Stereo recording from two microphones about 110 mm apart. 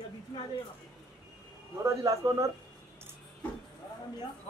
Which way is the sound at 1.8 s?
30° right (ahead or behind).